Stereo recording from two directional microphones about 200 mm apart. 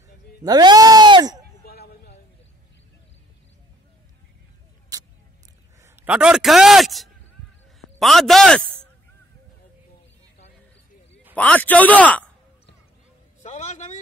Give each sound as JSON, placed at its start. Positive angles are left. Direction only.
{"t": 0.4, "sound": "speech", "side_deg": -20}
{"t": 1.7, "sound": "a sound", "side_deg": 50}
{"t": 4.9, "sound": "vehicle", "side_deg": -20}
{"t": 5.8, "sound": "a man's voice", "side_deg": -10}
{"t": 11.3, "sound": "a man's voice", "side_deg": 5}
{"t": 13.4, "sound": "a sound", "side_deg": 35}